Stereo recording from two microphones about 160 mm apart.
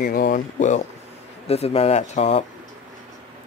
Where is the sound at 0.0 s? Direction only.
70° left (ahead or behind); by 0.8 s 50° left (ahead or behind).